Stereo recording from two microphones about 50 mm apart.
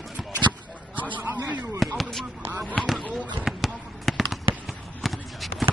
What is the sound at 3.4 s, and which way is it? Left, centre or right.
Fireworks, centre.